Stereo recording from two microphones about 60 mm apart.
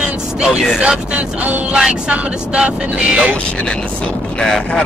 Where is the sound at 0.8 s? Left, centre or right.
Centre.